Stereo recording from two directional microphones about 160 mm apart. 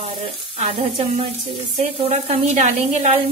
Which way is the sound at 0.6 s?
40° right (ahead or behind).